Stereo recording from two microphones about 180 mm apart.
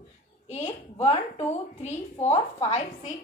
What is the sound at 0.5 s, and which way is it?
A woman's voice, 35° left (ahead or behind).